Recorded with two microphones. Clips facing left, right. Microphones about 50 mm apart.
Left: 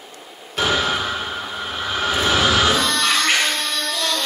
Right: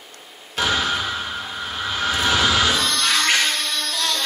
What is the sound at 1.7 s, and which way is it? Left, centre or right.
Vehicle, centre.